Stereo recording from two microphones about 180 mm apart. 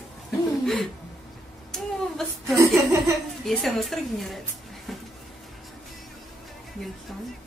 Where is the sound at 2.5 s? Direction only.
15° right (ahead or behind).